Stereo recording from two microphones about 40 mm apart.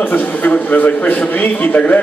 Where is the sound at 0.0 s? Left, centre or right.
Left.